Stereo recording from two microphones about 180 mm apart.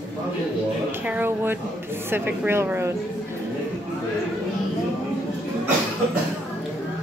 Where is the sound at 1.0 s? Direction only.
10° right (ahead or behind).